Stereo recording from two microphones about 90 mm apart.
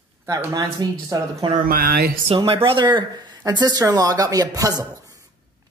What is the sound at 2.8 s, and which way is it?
Speech, 60° right (ahead or behind).